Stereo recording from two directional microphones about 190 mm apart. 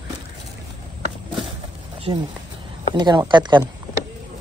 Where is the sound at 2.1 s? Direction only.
20° right (ahead or behind).